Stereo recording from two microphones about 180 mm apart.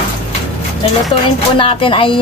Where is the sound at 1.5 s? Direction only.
30° left (ahead or behind).